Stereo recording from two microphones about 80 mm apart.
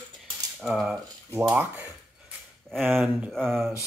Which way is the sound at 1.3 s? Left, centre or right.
Right.